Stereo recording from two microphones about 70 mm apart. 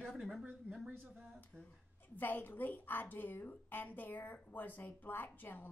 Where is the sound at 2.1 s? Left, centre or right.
Left.